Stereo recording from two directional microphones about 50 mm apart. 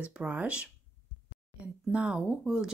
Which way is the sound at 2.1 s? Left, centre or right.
Centre.